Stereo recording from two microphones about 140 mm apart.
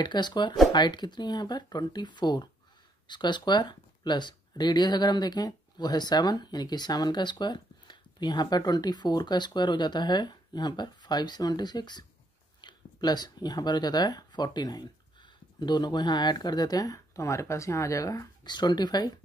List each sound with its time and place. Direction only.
0.0 s speech: 30° left (ahead or behind)